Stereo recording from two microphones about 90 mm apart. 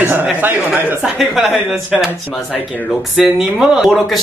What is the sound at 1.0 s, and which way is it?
Speech, 5° right (ahead or behind).